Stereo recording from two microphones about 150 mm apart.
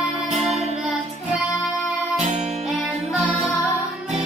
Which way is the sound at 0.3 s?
50° right (ahead or behind).